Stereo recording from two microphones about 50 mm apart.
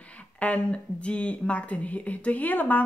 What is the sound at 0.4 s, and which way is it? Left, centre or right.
Speech, left.